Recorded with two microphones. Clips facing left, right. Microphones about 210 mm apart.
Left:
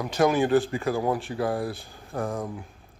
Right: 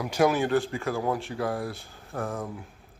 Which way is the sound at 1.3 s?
30° left (ahead or behind).